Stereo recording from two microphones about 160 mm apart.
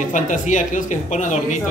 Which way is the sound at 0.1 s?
50° left (ahead or behind).